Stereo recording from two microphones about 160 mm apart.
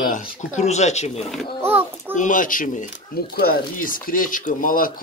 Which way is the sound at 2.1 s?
55° left (ahead or behind).